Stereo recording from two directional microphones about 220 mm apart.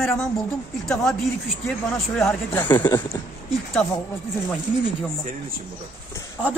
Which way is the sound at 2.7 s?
20° left (ahead or behind).